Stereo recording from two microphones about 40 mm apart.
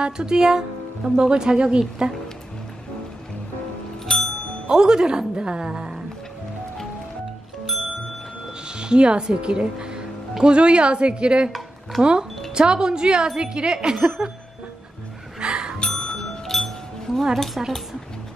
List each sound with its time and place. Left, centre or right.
0.0 s speech: centre
4.1 s music: centre
4.6 s speech: centre
8.6 s speech: right
15.3 s music: centre
15.8 s music: centre
17.1 s speech: centre